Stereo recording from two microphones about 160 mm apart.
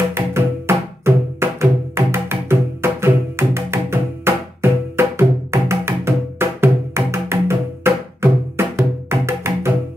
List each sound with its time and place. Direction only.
0.1 s music: 15° right (ahead or behind)